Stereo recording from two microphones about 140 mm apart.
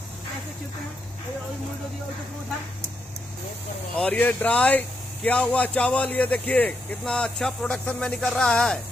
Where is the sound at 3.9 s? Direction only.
10° left (ahead or behind).